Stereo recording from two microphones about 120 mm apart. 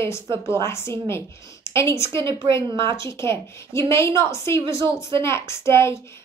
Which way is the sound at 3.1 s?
20° left (ahead or behind).